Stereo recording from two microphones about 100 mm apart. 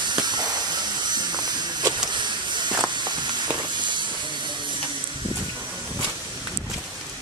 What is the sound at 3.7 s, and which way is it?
Hiss, 50° right (ahead or behind).